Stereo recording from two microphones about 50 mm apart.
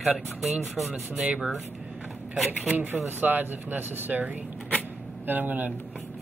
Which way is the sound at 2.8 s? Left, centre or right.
Right.